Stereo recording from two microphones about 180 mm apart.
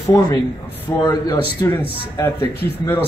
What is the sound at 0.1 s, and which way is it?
Speech, 20° left (ahead or behind).